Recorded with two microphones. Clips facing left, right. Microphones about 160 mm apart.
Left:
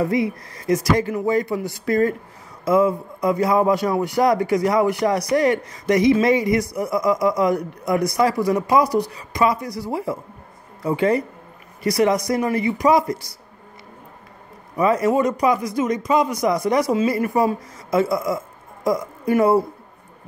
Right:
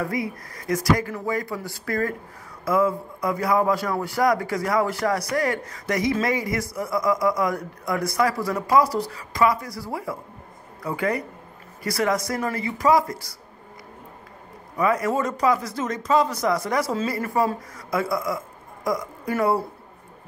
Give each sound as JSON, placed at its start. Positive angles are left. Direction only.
{"t": 0.0, "sound": "a man's voice", "side_deg": 25}
{"t": 14.8, "sound": "speech", "side_deg": 25}